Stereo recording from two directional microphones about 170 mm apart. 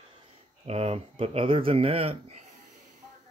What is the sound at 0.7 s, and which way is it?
Speech, 35° right (ahead or behind).